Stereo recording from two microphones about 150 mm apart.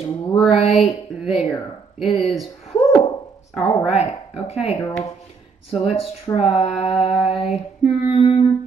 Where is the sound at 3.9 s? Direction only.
45° left (ahead or behind).